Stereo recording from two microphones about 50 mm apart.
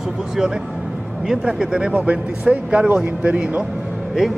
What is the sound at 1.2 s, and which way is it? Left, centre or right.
Speech, centre.